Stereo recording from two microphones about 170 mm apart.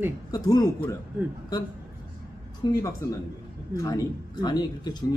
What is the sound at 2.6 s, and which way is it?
A man's voice, 25° left (ahead or behind).